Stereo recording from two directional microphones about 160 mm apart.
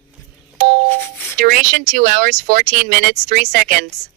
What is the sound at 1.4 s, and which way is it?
Speech, 60° right (ahead or behind).